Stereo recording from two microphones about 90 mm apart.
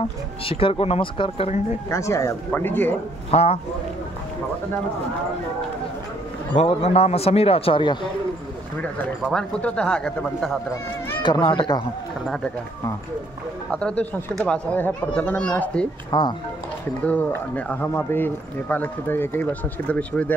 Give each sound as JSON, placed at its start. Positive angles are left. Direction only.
{"t": 0.5, "sound": "a man's voice", "side_deg": 90}
{"t": 1.9, "sound": "speech", "side_deg": 35}
{"t": 2.5, "sound": "speech", "side_deg": 20}
{"t": 6.5, "sound": "a man's voice", "side_deg": 90}
{"t": 9.3, "sound": "speech", "side_deg": 10}
{"t": 11.2, "sound": "speech", "side_deg": 55}
{"t": 13.7, "sound": "speech", "side_deg": 10}
{"t": 16.1, "sound": "speech", "side_deg": 55}
{"t": 17.0, "sound": "speech", "side_deg": 20}